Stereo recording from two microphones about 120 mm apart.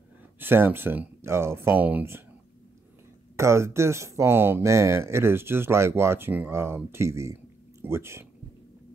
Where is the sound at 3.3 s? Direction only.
20° right (ahead or behind).